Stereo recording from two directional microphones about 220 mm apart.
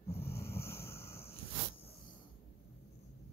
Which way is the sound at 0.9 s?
10° left (ahead or behind).